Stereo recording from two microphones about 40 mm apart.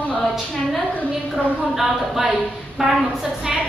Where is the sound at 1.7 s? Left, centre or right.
Centre.